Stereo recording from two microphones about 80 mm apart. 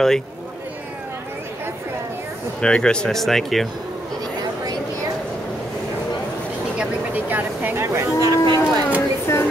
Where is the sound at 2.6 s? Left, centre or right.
Centre.